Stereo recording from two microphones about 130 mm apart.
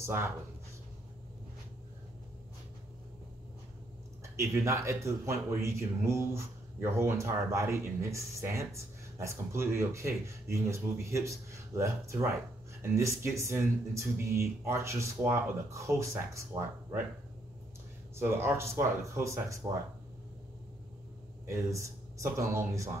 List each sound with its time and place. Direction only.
0.0 s speech: 20° right (ahead or behind)
4.2 s speech: 20° right (ahead or behind)
18.1 s speech: 20° right (ahead or behind)
21.5 s speech: 25° right (ahead or behind)